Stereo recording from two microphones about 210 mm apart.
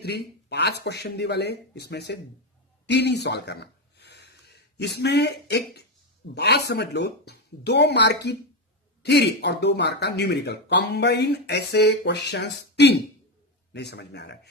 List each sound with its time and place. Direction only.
0.0 s speech: 55° left (ahead or behind)